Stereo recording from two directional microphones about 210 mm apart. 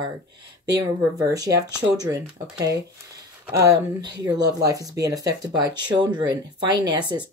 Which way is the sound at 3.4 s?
15° right (ahead or behind).